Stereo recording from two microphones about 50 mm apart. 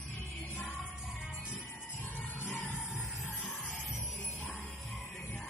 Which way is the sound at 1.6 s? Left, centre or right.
Left.